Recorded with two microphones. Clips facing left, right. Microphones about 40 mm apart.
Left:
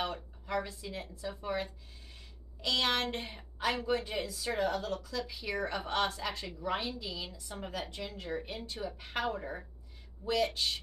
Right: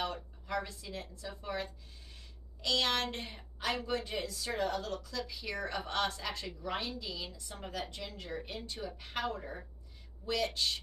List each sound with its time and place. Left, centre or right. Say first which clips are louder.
0.0 s a woman's voice: left 1 dB; centre